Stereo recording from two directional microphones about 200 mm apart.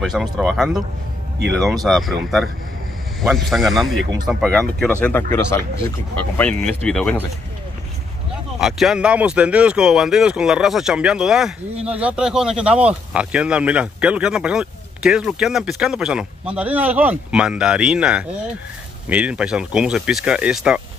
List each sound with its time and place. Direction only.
0.0 s speech: centre (ahead or behind)
1.9 s speech: centre (ahead or behind)
3.2 s speech: centre (ahead or behind)
8.5 s speech: centre (ahead or behind)